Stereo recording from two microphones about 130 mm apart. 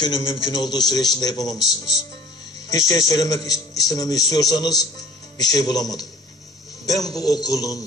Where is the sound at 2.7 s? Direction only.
30° left (ahead or behind).